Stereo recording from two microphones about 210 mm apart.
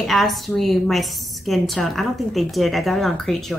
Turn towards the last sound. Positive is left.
turn(degrees=0)  # may be behind; listen again after turning